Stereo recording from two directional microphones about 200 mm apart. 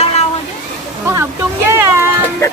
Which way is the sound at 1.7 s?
10° right (ahead or behind).